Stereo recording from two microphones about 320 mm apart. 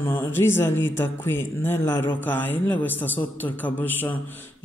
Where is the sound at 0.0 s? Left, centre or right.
Centre.